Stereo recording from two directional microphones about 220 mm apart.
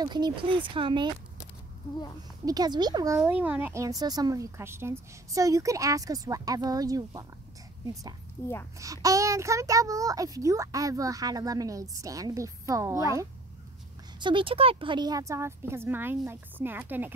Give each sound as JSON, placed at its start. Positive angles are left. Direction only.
{"t": 0.0, "sound": "speech", "side_deg": -20}
{"t": 2.4, "sound": "a child's voice", "side_deg": -15}
{"t": 3.2, "sound": "a child's voice", "side_deg": -5}
{"t": 8.7, "sound": "a child's voice", "side_deg": -15}